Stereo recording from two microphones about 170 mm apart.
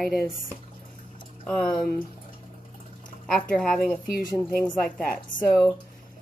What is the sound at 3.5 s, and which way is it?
A woman's voice, 5° left (ahead or behind).